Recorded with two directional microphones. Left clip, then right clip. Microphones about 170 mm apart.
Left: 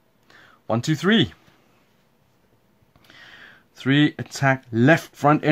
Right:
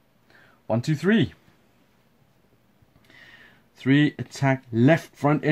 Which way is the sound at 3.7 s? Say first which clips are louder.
Left 2 dB; 30° left (ahead or behind).